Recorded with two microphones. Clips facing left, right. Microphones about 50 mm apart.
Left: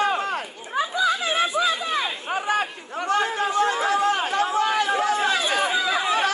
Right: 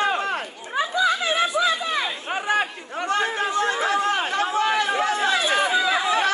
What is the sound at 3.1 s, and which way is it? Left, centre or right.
Chatter, right.